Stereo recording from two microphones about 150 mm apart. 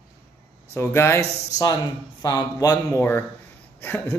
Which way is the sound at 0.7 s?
15° left (ahead or behind).